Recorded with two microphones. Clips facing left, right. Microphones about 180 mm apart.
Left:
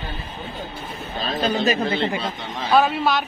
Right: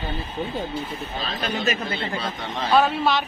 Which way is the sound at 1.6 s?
30° left (ahead or behind).